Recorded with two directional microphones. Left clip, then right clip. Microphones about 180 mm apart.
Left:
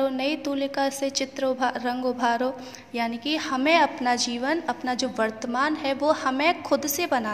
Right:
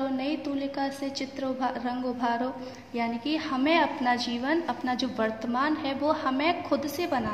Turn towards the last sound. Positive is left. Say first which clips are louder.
# left 4 dB
turn(degrees=45)  # may be behind; listen again after turning